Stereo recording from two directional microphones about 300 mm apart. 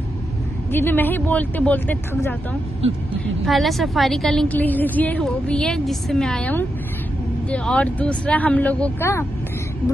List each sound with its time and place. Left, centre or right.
0.7 s speech: centre
3.4 s a woman's voice: centre